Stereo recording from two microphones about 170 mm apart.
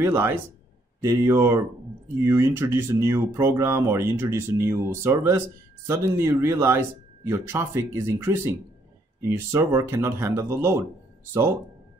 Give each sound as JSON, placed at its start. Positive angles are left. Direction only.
{"t": 0.0, "sound": "speech", "side_deg": -15}